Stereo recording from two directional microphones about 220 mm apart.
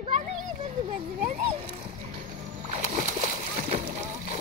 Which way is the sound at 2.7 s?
35° right (ahead or behind).